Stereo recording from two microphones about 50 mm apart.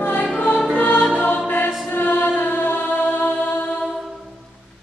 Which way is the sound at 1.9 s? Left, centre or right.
Left.